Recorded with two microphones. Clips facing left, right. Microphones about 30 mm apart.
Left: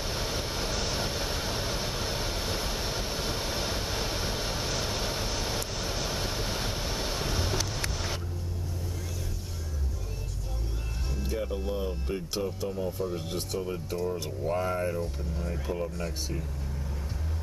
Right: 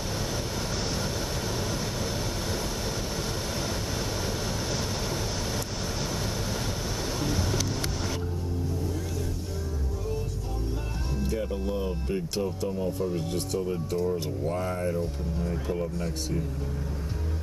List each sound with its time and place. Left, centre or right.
0.1 s vehicle: left
11.2 s speech: centre